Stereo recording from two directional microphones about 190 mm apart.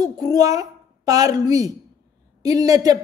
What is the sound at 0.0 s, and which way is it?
A woman's voice, 20° right (ahead or behind).